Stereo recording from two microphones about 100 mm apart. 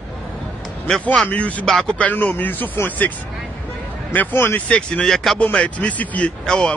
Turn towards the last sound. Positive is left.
turn(degrees=10)  # may be behind; listen again after turning